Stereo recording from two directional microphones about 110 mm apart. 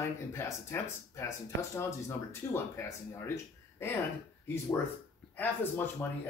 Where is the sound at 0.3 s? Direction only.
25° left (ahead or behind).